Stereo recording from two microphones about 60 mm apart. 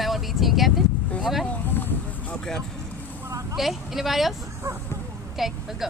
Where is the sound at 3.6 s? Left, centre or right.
Centre.